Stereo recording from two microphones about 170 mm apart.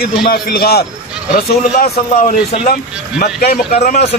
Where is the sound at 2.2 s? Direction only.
50° left (ahead or behind).